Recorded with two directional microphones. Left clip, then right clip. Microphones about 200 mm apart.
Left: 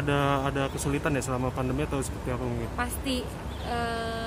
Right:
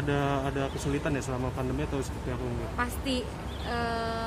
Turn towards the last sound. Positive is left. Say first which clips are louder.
# even
turn(degrees=-5)  # may be behind; listen again after turning